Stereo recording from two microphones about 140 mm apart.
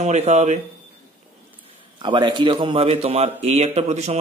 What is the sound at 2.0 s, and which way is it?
A man's voice, 35° right (ahead or behind).